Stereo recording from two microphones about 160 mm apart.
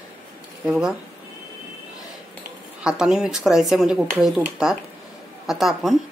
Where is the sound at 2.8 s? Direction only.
5° right (ahead or behind).